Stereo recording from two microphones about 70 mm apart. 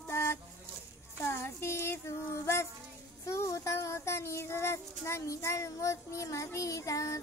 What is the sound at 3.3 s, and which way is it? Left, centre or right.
Child singing, left.